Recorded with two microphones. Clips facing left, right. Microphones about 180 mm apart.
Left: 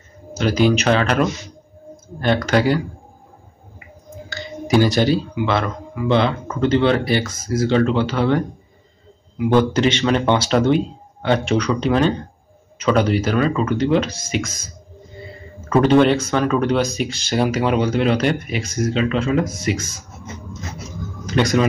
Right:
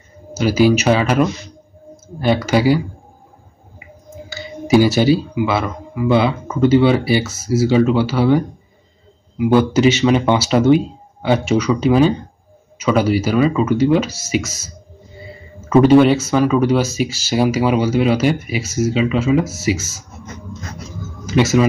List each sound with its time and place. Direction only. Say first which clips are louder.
0.3 s speech: right 3 dB; 5° right (ahead or behind)
4.3 s speech: right 4 dB; 5° right (ahead or behind)
9.5 s speech: right 3 dB; 10° right (ahead or behind)
15.7 s speech: right 4 dB; 5° right (ahead or behind)
21.3 s speech: right 3 dB; 5° right (ahead or behind)